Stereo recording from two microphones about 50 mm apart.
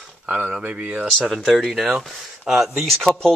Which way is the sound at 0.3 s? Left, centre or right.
Right.